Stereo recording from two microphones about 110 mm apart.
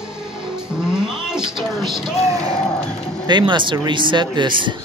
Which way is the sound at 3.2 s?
45° right (ahead or behind).